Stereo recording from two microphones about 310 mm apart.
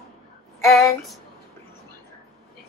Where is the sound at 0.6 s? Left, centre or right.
Centre.